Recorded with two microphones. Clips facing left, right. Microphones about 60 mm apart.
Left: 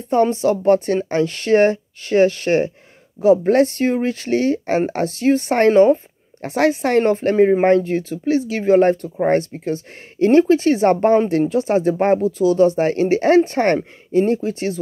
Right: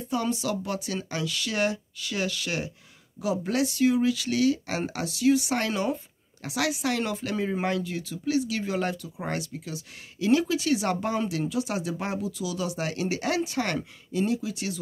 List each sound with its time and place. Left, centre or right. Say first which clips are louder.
0.1 s speech: left 12 dB; left